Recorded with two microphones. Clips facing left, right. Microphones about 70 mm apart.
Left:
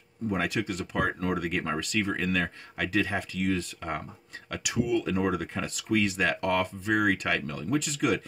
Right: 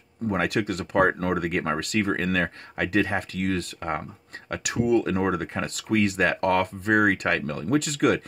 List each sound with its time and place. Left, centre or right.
0.3 s speech: right